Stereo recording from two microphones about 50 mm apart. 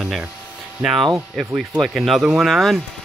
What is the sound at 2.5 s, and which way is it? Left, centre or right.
Speech, centre.